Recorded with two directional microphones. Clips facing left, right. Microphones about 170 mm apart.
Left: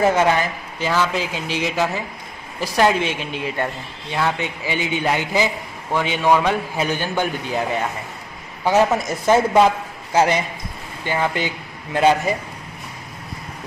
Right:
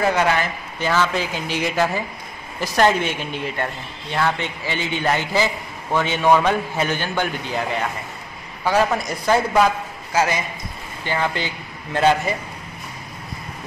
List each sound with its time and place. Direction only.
0.0 s speech: 20° left (ahead or behind)
0.8 s a man's voice: 5° left (ahead or behind); by 10.4 s 30° left (ahead or behind)
11.1 s a man's voice: 15° left (ahead or behind)